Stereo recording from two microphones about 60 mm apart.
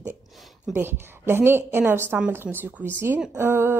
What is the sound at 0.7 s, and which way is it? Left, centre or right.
A woman's voice, right.